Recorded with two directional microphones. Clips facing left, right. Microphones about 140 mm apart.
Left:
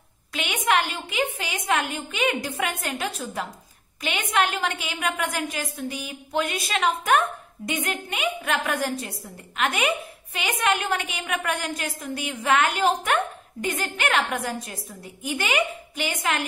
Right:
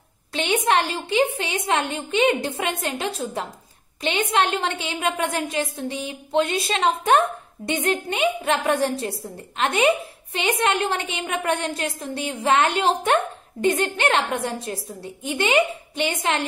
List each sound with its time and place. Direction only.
0.3 s a woman's voice: 30° right (ahead or behind)